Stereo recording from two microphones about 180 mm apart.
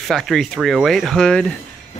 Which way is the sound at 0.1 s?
Centre (ahead or behind).